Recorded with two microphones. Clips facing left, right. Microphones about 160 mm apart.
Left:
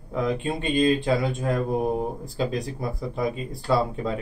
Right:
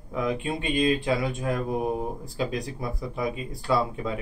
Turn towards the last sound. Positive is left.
turn(degrees=30)  # may be behind; listen again after turning